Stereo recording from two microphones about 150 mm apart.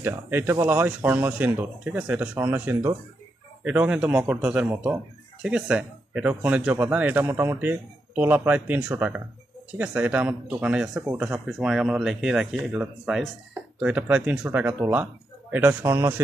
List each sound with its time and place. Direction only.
0.0 s speech: 15° right (ahead or behind)